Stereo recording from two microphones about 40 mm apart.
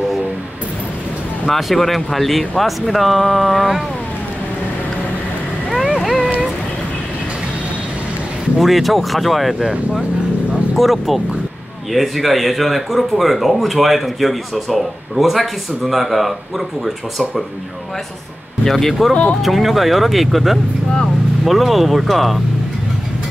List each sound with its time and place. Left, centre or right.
1.5 s speech: centre
6.0 s boat: centre
8.5 s speech: centre
10.8 s speech: centre
18.6 s speech: centre